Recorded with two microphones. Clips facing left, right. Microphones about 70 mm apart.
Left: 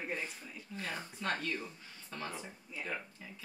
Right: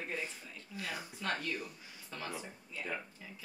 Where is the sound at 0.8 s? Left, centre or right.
Centre.